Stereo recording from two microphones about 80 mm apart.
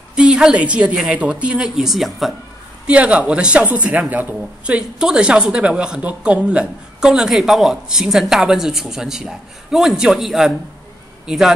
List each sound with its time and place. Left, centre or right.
0.1 s a woman's voice: centre
2.9 s speech: centre